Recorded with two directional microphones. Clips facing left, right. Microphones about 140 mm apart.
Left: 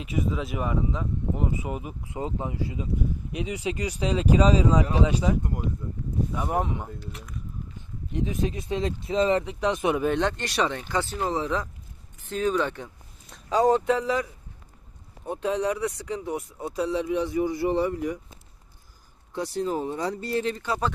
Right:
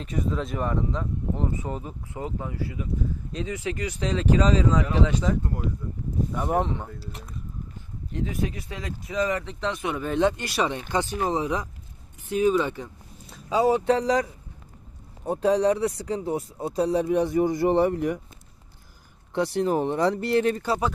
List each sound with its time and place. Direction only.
0.0 s speech: 5° left (ahead or behind)
8.1 s speech: 20° left (ahead or behind)
9.4 s speech: 15° left (ahead or behind)
10.0 s speech: 5° right (ahead or behind)
13.8 s speech: 35° right (ahead or behind)
16.7 s speech: 40° right (ahead or behind); by 18.2 s 60° right (ahead or behind)
19.3 s speech: 65° right (ahead or behind)